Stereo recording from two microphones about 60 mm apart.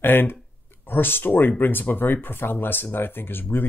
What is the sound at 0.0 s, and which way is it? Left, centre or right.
Speech, left.